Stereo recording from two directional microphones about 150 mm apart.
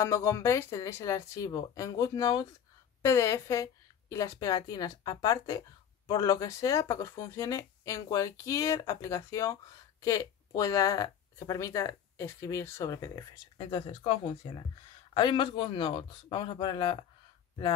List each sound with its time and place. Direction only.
0.0 s speech: 15° left (ahead or behind)
13.6 s speech: 30° left (ahead or behind)